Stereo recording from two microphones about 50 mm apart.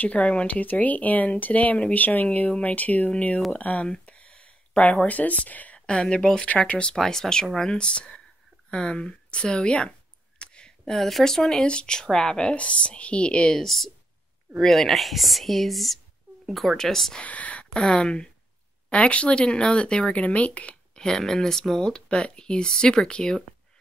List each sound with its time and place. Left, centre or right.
0.0 s speech: left
3.5 s a sound: left
5.0 s speech: left
5.8 s speech: centre
10.4 s a sound: centre
11.0 s speech: centre
13.7 s speech: centre
17.2 s speech: left
17.8 s speech: centre